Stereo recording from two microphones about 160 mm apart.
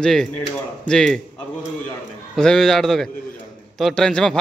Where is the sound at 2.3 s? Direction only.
5° left (ahead or behind).